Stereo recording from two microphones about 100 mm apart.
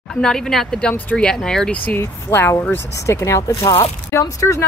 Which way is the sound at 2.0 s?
25° left (ahead or behind).